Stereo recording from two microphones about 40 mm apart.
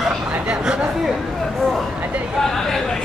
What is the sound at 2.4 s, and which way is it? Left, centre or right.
Chatter, centre.